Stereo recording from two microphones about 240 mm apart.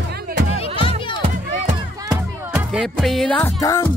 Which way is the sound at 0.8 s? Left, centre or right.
Left.